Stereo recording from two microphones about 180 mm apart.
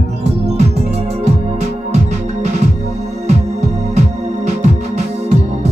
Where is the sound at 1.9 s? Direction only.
40° right (ahead or behind).